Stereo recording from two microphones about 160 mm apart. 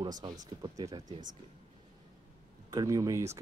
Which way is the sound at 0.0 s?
30° right (ahead or behind).